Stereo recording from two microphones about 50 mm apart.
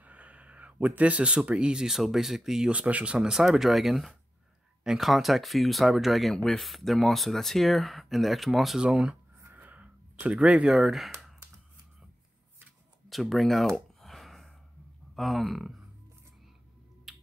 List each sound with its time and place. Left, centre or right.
0.0 s speech: right; by 2.7 s centre
2.7 s speech: right; by 6.3 s centre
6.3 s speech: centre
8.8 s speech: centre
9.5 s a sound: right
10.7 s speech: centre
13.1 s speech: centre
14.0 s a sound: centre
15.1 s speech: centre
17.1 s finger snapping: centre